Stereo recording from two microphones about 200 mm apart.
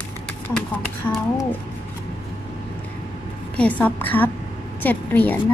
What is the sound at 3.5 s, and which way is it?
A woman's voice, 10° left (ahead or behind).